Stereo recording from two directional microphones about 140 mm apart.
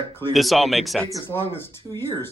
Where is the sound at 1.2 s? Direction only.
15° left (ahead or behind).